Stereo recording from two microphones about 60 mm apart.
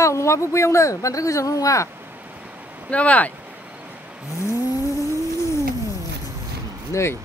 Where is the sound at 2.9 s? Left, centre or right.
Left.